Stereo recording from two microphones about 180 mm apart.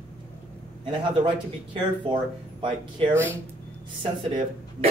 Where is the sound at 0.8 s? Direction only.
25° right (ahead or behind).